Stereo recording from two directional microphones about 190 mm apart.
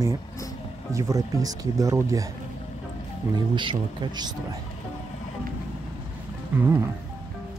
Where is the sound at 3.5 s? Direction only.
25° right (ahead or behind).